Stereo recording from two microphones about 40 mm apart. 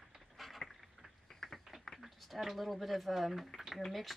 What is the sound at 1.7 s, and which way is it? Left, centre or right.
Speech, centre.